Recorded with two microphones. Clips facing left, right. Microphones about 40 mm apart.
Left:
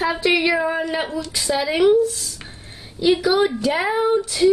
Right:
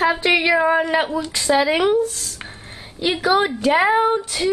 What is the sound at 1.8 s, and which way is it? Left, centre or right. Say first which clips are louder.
Speech: left 3 dB; right.